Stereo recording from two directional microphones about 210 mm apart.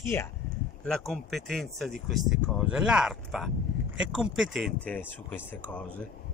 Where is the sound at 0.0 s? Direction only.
10° left (ahead or behind).